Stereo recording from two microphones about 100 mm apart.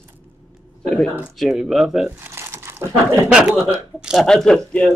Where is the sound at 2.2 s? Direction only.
25° right (ahead or behind).